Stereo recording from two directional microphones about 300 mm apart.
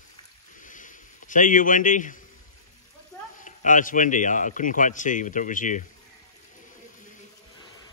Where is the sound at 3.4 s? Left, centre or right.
Left.